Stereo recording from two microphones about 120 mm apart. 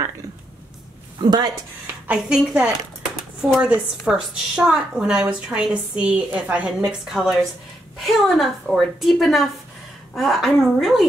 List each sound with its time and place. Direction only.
1.2 s a woman's voice: 35° right (ahead or behind)
2.0 s a woman's voice: 5° right (ahead or behind)